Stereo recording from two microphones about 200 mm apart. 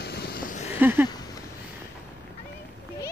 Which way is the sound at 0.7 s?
10° right (ahead or behind).